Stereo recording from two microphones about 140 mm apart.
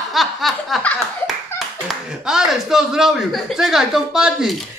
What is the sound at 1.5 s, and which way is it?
Speech, 5° right (ahead or behind).